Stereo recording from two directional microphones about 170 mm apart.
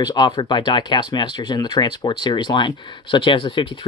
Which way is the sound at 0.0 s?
25° left (ahead or behind).